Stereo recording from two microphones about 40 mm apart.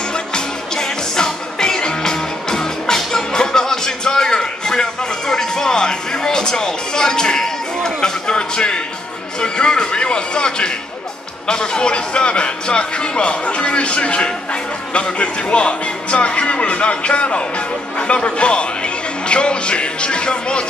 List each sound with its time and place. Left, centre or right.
0.1 s music: centre
9.4 s speech: left